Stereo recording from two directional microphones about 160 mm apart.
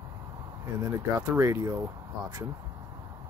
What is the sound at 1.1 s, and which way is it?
Speech, 20° right (ahead or behind).